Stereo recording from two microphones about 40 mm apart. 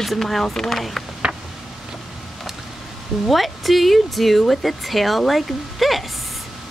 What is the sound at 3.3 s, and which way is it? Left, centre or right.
Speech, centre.